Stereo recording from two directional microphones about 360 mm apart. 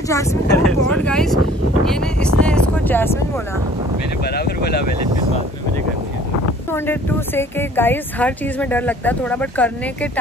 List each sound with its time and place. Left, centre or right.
0.1 s speech: centre
1.9 s a sound: centre
4.3 s speech: left
6.7 s speech: centre